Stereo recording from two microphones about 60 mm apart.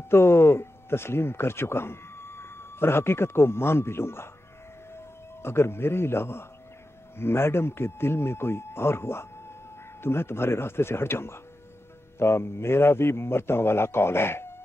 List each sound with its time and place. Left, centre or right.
0.1 s a man's voice: left